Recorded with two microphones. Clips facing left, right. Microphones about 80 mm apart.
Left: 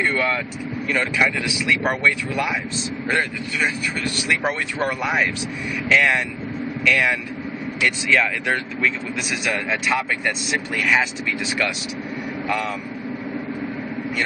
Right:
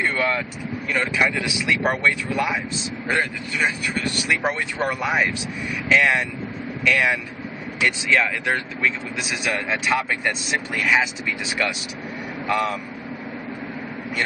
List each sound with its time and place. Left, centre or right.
0.1 s speech: centre
1.9 s speech: right
4.3 s speech: centre
10.8 s speech: centre